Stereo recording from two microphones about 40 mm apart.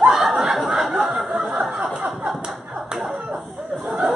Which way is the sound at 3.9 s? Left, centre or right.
Centre.